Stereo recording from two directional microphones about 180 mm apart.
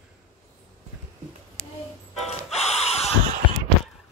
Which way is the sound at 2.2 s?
35° left (ahead or behind).